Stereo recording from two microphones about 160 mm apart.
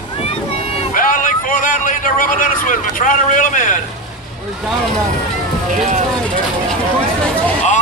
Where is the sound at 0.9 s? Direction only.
55° left (ahead or behind).